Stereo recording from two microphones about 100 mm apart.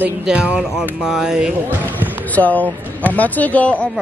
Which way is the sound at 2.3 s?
15° left (ahead or behind).